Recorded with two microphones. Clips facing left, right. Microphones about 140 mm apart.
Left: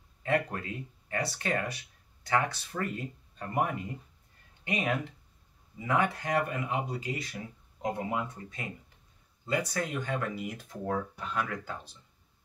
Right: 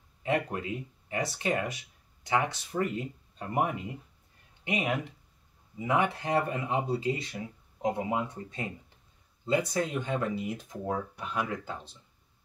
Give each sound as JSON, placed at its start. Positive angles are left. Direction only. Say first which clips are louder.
{"t": 0.2, "sound": "speech", "louder": "even", "side_deg": -20}